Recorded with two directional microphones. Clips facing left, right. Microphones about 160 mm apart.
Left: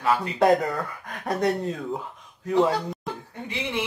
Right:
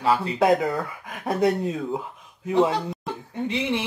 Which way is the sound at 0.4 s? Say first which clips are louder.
Left 2 dB; centre (ahead or behind).